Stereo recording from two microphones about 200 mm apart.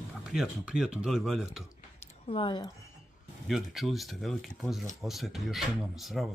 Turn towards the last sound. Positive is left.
turn(degrees=0)  # may be behind; listen again after turning